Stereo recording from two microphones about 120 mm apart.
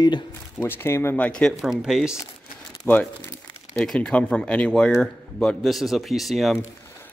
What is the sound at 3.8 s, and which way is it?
Speech, 5° left (ahead or behind).